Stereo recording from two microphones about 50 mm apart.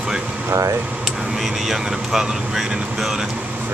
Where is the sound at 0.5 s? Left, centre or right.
Right.